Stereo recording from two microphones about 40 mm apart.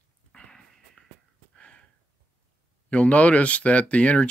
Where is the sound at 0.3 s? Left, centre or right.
Left.